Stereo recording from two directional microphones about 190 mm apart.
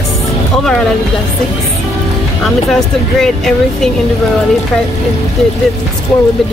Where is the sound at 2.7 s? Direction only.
Centre (ahead or behind).